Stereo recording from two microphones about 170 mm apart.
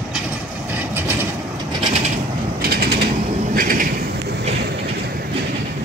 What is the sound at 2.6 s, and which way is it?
Mechanisms, 65° right (ahead or behind).